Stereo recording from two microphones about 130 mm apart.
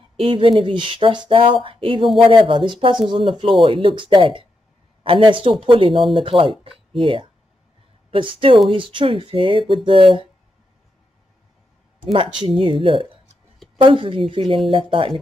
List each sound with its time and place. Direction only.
0.2 s speech: 40° right (ahead or behind)
12.0 s speech: 40° right (ahead or behind)